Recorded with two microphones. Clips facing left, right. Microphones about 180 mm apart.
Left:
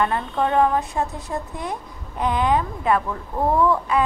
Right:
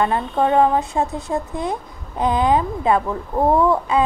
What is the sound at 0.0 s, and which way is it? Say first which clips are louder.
Speech: right 3 dB; 25° right (ahead or behind).